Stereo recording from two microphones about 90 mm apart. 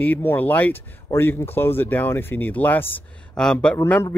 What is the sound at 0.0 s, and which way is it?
Speech, 20° left (ahead or behind).